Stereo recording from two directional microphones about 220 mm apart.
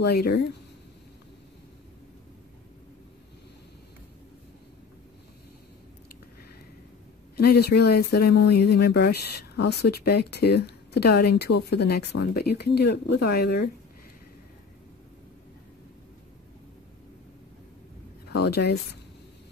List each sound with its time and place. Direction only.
0.0 s speech: 45° left (ahead or behind)
7.3 s speech: 45° left (ahead or behind)
18.4 s speech: 45° left (ahead or behind)